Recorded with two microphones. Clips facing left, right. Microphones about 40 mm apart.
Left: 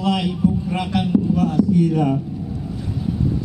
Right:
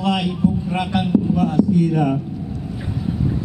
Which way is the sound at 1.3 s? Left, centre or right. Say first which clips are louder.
Even; right.